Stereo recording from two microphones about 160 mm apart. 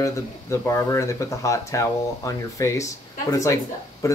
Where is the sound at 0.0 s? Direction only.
20° left (ahead or behind).